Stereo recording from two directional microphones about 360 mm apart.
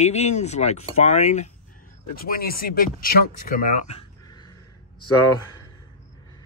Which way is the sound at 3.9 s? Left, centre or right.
Centre.